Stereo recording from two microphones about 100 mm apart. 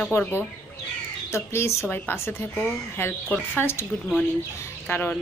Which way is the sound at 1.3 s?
25° left (ahead or behind).